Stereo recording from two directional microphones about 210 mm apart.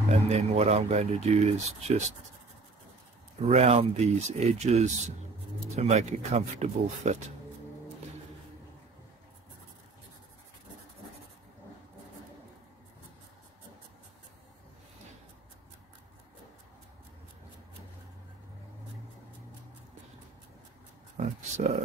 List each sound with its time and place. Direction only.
0.1 s speech: 30° right (ahead or behind)
3.3 s speech: 30° right (ahead or behind)
21.2 s speech: 35° right (ahead or behind)